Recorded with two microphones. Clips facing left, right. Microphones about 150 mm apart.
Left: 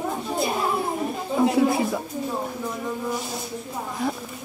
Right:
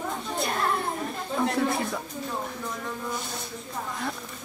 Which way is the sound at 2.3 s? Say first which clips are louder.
Left 3 dB; 15° left (ahead or behind).